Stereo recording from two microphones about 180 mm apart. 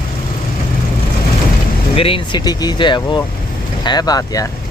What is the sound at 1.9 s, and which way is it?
Speech, 30° left (ahead or behind).